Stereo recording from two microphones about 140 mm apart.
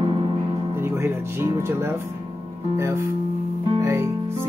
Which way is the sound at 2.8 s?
20° right (ahead or behind).